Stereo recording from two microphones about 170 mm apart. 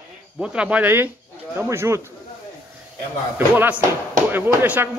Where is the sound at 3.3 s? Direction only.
10° right (ahead or behind).